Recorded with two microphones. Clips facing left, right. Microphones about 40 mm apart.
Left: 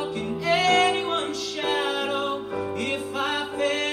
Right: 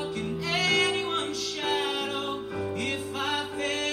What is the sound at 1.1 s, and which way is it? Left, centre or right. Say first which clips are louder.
Music: left 3 dB; centre.